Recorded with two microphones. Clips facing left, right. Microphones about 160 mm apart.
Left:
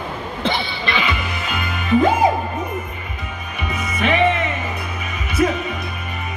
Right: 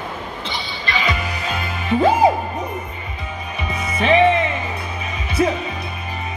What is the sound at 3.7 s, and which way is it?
Music, 30° right (ahead or behind).